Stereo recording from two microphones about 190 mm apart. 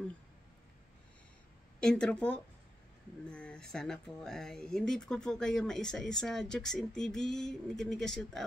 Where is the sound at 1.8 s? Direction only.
5° left (ahead or behind).